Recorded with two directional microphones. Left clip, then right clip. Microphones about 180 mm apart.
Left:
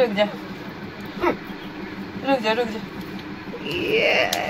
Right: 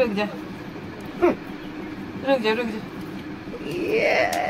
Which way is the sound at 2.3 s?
25° left (ahead or behind).